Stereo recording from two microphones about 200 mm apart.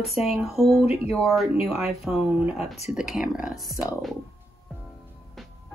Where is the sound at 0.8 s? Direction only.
30° left (ahead or behind).